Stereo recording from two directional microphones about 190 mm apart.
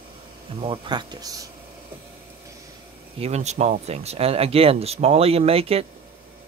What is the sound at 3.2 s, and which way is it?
Speech, 35° right (ahead or behind).